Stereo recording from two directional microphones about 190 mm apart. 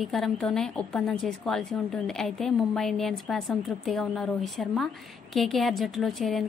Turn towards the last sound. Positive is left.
turn(degrees=0)  # may be behind; listen again after turning